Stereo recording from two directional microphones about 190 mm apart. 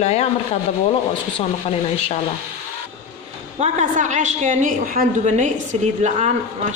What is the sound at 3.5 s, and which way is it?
A woman's voice, 40° right (ahead or behind).